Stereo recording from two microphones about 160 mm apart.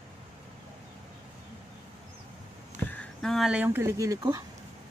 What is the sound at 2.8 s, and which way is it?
Speech, 10° left (ahead or behind).